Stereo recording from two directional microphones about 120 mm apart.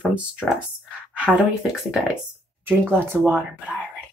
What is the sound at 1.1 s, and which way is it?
Speech, 5° right (ahead or behind).